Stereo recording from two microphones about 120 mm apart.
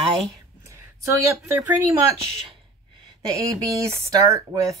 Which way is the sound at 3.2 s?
30° right (ahead or behind).